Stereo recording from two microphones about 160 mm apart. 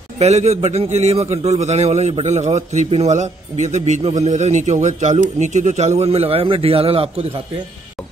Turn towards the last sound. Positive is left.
turn(degrees=-35)  # may be behind; listen again after turning